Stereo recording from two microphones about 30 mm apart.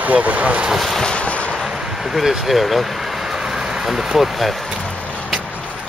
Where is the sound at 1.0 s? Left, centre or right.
Left.